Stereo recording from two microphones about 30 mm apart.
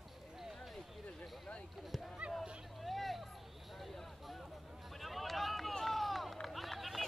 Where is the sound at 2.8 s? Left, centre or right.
Centre.